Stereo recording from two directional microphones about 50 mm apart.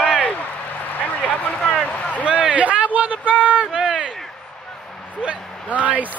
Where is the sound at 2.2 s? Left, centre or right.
Right.